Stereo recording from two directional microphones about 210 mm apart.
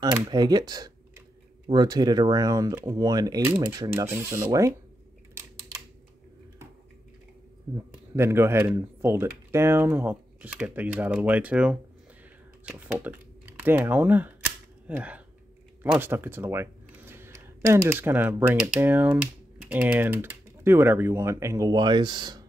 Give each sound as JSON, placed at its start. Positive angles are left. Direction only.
{"t": 0.3, "sound": "speech", "side_deg": -20}
{"t": 7.7, "sound": "speech", "side_deg": -10}